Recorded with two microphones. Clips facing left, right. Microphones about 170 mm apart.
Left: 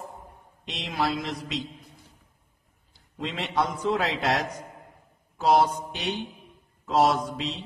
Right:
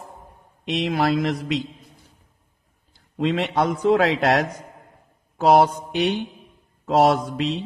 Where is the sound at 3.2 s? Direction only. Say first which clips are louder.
Right 7 dB; 60° right (ahead or behind).